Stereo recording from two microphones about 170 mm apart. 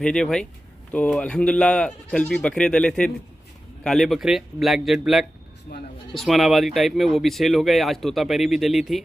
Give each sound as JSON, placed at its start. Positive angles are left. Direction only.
{"t": 0.0, "sound": "speech", "side_deg": 5}
{"t": 5.7, "sound": "speech", "side_deg": 75}
{"t": 6.1, "sound": "speech", "side_deg": 0}